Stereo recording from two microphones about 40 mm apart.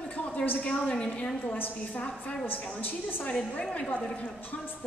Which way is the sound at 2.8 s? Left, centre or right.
Left.